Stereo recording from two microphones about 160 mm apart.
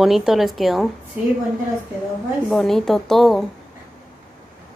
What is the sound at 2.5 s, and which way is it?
Speech, centre (ahead or behind).